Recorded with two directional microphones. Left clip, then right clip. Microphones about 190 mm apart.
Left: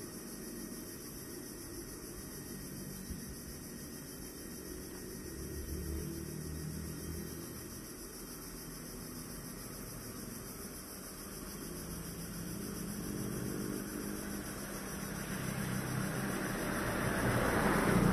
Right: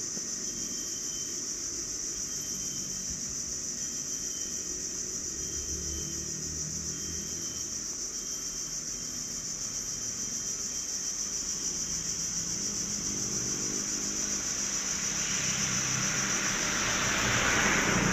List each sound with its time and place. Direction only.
15.8 s vehicle: 35° left (ahead or behind)